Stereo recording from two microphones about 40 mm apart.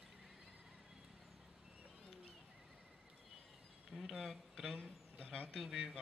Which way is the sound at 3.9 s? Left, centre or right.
Centre.